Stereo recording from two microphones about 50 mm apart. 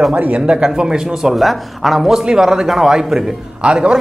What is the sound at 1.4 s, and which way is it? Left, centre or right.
Speech, centre.